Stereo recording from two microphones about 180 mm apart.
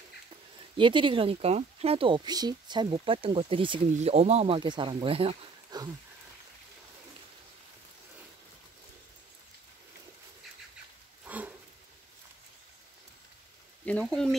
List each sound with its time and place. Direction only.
0.7 s speech: 25° right (ahead or behind)
11.2 s a sound: 10° right (ahead or behind)
13.8 s speech: 5° left (ahead or behind)